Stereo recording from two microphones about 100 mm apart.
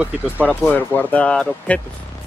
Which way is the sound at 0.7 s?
15° left (ahead or behind).